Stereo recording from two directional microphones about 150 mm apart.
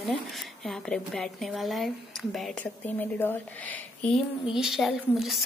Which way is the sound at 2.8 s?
15° left (ahead or behind).